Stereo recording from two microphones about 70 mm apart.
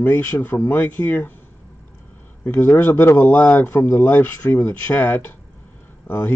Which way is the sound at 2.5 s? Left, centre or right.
Left.